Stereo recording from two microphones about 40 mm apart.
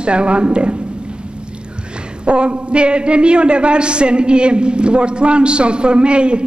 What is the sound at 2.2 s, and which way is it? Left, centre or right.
A man's voice, right.